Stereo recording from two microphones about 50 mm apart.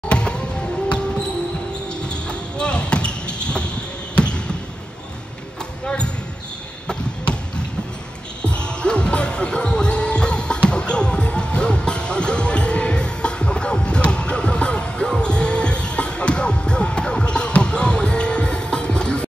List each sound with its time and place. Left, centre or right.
0.1 s music: centre
2.0 s basketball bounce: centre
5.9 s basketball bounce: left
8.4 s music: centre